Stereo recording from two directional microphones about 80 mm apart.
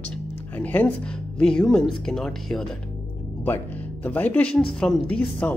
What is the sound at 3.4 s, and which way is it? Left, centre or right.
A woman's voice, left.